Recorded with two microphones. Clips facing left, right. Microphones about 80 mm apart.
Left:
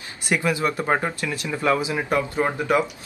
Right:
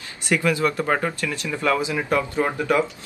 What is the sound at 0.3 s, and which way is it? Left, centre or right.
Speech, left.